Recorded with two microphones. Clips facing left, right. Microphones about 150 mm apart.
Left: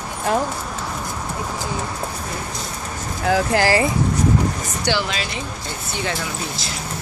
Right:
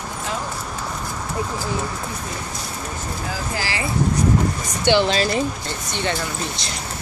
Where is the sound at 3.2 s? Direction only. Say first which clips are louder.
Left 12 dB; 70° left (ahead or behind).